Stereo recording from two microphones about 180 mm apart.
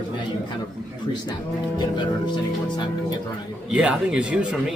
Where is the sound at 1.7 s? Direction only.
25° left (ahead or behind).